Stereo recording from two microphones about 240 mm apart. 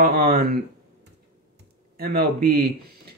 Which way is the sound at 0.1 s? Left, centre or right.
Right.